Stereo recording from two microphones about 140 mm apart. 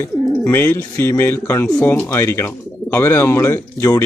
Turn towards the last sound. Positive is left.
turn(degrees=15)  # may be behind; listen again after turning